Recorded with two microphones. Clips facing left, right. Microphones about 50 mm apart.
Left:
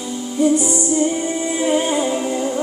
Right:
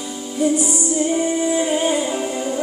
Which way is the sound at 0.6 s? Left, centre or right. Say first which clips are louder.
Left 2 dB; left.